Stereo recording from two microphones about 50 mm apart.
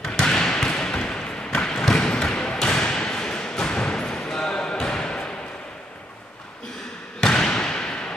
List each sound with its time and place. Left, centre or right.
0.0 s basketball bounce: centre
0.3 s trickle: centre
2.3 s thump: centre
4.8 s basketball bounce: centre
7.2 s basketball bounce: centre